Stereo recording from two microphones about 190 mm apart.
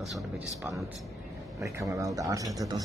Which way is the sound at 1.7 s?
15° right (ahead or behind).